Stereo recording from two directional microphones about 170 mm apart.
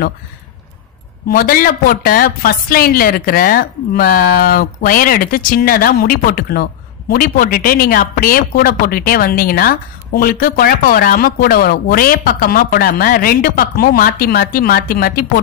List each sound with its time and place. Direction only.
1.3 s a woman's voice: 60° left (ahead or behind)